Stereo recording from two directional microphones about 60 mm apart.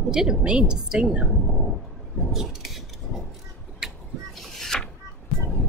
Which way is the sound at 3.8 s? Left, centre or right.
Centre.